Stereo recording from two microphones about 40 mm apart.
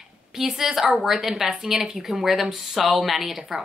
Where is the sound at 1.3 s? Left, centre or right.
Right.